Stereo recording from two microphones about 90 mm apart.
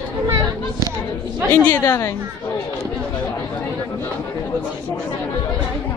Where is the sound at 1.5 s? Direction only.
20° left (ahead or behind).